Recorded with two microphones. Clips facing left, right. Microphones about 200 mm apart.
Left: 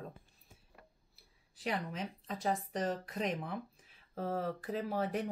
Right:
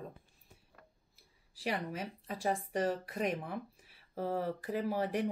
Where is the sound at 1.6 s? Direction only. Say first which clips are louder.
Right 1 dB; 10° right (ahead or behind).